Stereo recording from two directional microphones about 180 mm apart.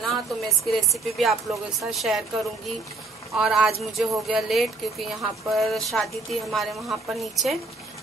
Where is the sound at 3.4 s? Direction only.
5° right (ahead or behind).